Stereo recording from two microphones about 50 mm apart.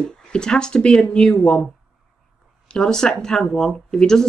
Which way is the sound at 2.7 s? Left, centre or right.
Centre.